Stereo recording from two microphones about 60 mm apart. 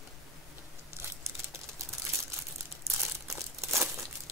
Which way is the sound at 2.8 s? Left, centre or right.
Right.